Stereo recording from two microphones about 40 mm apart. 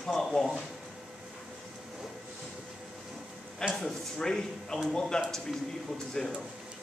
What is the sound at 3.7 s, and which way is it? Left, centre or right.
Speech, centre.